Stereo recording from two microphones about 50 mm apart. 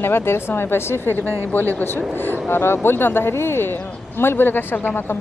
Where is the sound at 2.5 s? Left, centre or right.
Left.